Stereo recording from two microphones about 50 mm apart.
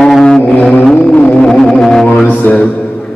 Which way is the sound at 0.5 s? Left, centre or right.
Left.